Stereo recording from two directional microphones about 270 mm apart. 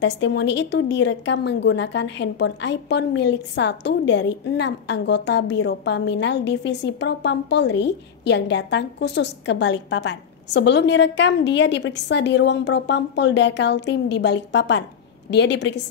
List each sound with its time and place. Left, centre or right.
0.0 s a woman's voice: left